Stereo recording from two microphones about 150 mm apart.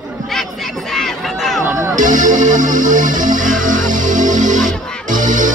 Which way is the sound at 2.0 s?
60° right (ahead or behind).